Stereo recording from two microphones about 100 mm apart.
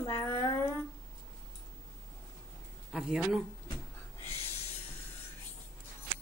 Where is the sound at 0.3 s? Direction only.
30° left (ahead or behind).